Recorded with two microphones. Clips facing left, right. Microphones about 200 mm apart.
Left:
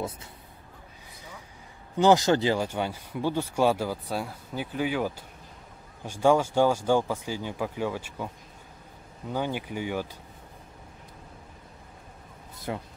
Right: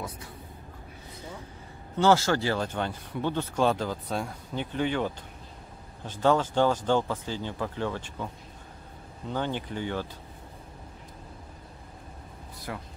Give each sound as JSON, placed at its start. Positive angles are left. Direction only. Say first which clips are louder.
{"t": 2.0, "sound": "speech", "louder": "left 2 dB", "side_deg": 15}
{"t": 9.3, "sound": "speech", "louder": "left 1 dB", "side_deg": 10}
{"t": 12.5, "sound": "a sound", "louder": "left 4 dB", "side_deg": 25}